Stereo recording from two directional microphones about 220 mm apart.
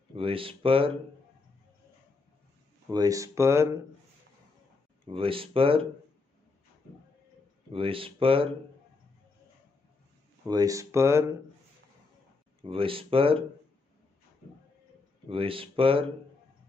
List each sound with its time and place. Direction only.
0.1 s speech: 25° right (ahead or behind)
2.9 s speech: 15° right (ahead or behind)
5.0 s speech: 25° right (ahead or behind)
7.7 s speech: 25° right (ahead or behind)
10.4 s speech: 15° right (ahead or behind)
12.6 s speech: 25° right (ahead or behind)
15.2 s speech: 25° right (ahead or behind)